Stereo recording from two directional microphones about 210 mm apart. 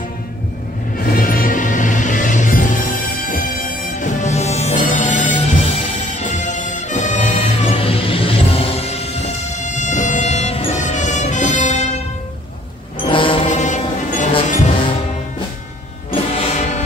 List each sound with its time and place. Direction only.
1.1 s music: 40° left (ahead or behind)
13.1 s music: 25° left (ahead or behind)
16.3 s music: 35° left (ahead or behind)